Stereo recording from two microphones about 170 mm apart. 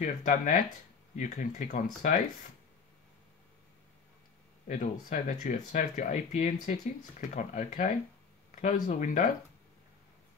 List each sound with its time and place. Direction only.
0.0 s speech: 45° left (ahead or behind)
4.6 s speech: 50° left (ahead or behind)